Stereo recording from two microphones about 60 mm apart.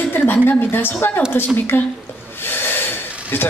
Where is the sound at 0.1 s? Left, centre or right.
Left.